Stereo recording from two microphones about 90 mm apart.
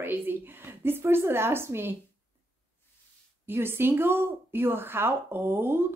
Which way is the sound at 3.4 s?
25° right (ahead or behind).